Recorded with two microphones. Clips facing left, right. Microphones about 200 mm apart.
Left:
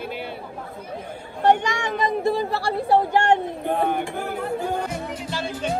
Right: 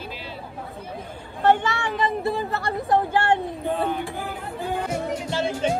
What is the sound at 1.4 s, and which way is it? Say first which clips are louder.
Speech: left 1 dB; 15° left (ahead or behind).